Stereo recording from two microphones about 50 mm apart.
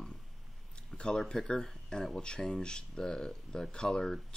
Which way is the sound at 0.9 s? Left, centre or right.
Centre.